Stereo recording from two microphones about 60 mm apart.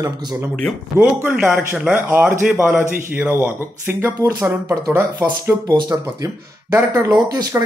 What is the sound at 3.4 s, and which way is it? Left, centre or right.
Speech, right.